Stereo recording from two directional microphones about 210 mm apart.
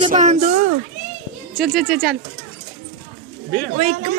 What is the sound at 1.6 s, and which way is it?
Speech, centre (ahead or behind).